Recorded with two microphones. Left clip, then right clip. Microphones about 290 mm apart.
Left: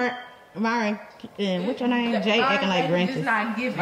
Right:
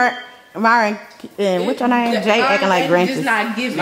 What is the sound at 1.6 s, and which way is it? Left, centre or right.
Speech, centre.